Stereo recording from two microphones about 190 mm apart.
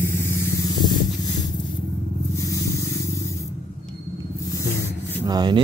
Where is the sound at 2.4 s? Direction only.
15° left (ahead or behind).